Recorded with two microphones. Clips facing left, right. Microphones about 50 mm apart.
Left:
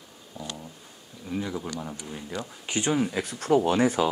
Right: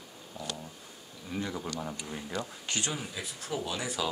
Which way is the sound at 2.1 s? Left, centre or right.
Centre.